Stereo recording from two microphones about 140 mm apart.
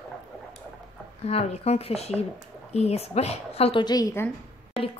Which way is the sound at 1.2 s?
45° left (ahead or behind).